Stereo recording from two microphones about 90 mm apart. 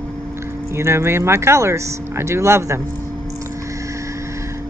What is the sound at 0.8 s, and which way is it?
Speech, 30° right (ahead or behind).